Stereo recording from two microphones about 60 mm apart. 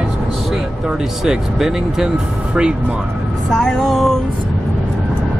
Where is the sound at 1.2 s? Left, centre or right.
Centre.